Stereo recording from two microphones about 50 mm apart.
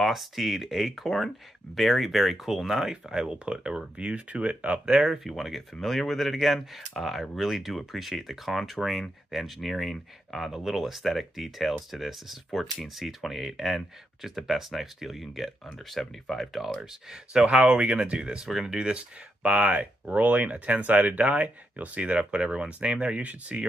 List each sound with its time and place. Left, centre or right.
0.0 s speech: centre; by 5.0 s right
5.0 s speech: centre
16.8 s speech: centre
17.6 s speech: right
19.4 s speech: right